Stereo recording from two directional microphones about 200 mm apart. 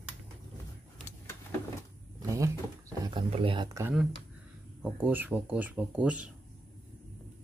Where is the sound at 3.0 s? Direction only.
25° right (ahead or behind).